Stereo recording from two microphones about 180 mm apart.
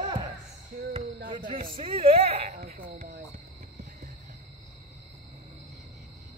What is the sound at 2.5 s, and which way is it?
Speech, 50° right (ahead or behind).